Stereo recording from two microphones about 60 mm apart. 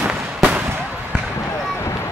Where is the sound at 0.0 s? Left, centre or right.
Right.